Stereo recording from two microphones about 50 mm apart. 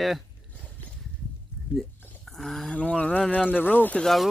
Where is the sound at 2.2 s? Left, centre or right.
Centre.